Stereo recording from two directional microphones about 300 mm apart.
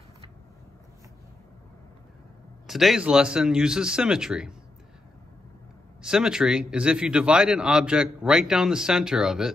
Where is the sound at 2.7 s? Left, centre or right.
Centre.